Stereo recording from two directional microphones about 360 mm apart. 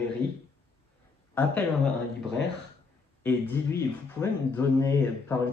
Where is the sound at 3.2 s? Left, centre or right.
Centre.